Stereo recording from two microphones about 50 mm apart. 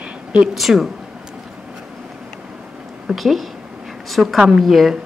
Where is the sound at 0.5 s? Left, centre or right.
Centre.